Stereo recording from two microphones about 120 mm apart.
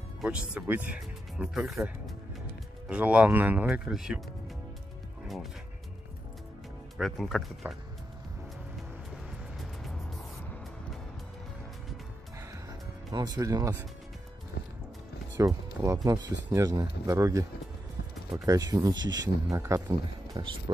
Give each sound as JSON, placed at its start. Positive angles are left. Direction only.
{"t": 0.2, "sound": "speech", "side_deg": -10}
{"t": 1.5, "sound": "speech", "side_deg": 0}
{"t": 2.9, "sound": "speech", "side_deg": -10}
{"t": 7.0, "sound": "speech", "side_deg": 0}
{"t": 13.1, "sound": "speech", "side_deg": -35}
{"t": 15.3, "sound": "speech", "side_deg": -25}
{"t": 19.9, "sound": "speech", "side_deg": -40}